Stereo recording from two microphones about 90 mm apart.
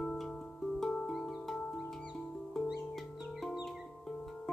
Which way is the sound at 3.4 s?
Centre (ahead or behind).